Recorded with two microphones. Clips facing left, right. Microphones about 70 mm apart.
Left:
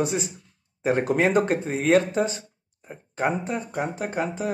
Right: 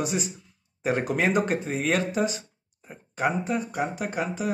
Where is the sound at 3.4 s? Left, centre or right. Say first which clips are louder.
Even; left.